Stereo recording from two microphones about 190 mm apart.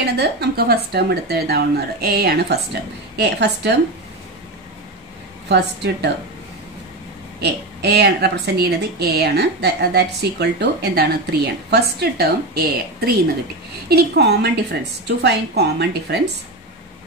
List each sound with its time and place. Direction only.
0.0 s a woman's voice: 60° right (ahead or behind)
5.5 s a woman's voice: 60° right (ahead or behind)
7.3 s a woman's voice: 60° right (ahead or behind)